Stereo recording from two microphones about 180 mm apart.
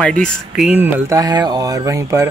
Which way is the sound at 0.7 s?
10° right (ahead or behind).